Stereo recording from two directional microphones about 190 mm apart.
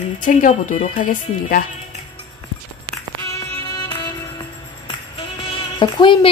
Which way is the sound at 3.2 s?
20° left (ahead or behind).